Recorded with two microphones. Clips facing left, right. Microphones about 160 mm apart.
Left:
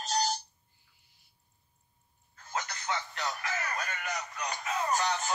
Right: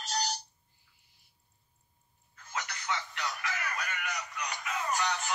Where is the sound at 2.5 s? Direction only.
35° left (ahead or behind).